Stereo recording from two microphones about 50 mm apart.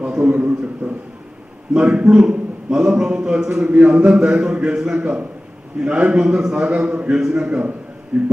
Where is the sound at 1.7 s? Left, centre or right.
Right.